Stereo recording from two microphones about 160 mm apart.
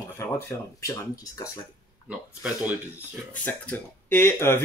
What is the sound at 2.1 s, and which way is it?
Speech, 10° right (ahead or behind).